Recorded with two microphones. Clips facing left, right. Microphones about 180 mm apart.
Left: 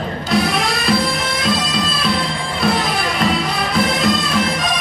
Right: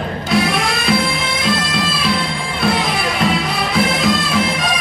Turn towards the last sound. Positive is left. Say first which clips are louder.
# right 1 dB
turn(degrees=0)  # may be behind; listen again after turning